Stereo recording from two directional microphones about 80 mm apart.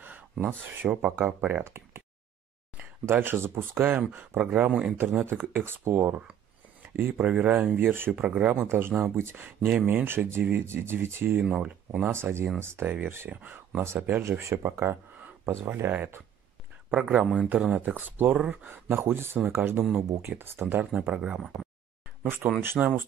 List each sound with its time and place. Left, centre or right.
0.0 s speech: right
8.3 s speech: centre
8.5 s speech: right
11.4 s speech: centre
12.1 s speech: right
16.9 s speech: centre
18.7 s speech: right; by 21.6 s centre
22.4 s speech: centre